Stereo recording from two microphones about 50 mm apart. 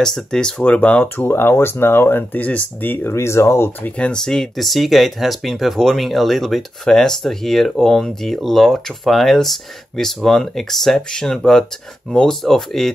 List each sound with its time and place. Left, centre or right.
0.0 s speech: centre
0.7 s speech: left
1.0 s speech: left
2.3 s speech: left
3.1 s speech: left
3.9 s speech: left
4.2 s speech: centre
4.6 s speech: centre